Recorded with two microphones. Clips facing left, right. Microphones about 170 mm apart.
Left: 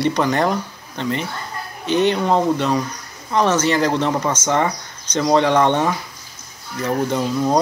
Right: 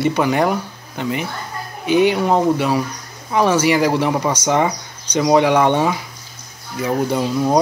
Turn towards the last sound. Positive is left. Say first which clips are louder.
# right 1 dB
turn(degrees=-10)  # may be behind; listen again after turning